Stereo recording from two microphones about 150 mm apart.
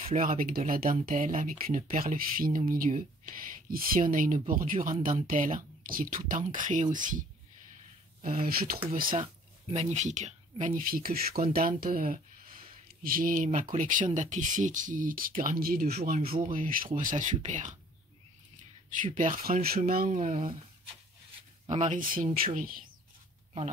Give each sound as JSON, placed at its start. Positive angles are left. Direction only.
{"t": 0.2, "sound": "speech", "side_deg": -65}
{"t": 8.2, "sound": "speech", "side_deg": -70}
{"t": 9.8, "sound": "speech", "side_deg": -50}
{"t": 16.5, "sound": "speech", "side_deg": -70}
{"t": 18.9, "sound": "speech", "side_deg": -60}
{"t": 19.3, "sound": "speech", "side_deg": -75}
{"t": 19.9, "sound": "speech", "side_deg": -70}
{"t": 21.6, "sound": "speech", "side_deg": -50}